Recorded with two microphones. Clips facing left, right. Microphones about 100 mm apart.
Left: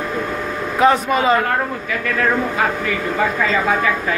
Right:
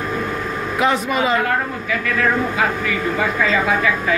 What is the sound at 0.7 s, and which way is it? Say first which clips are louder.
Speech: left 4 dB; 35° left (ahead or behind).